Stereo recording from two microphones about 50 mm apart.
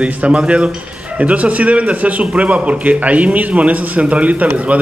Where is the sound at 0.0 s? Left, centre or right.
Right.